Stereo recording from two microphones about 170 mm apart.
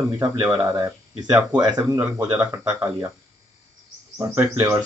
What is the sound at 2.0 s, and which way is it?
Speech, 10° right (ahead or behind).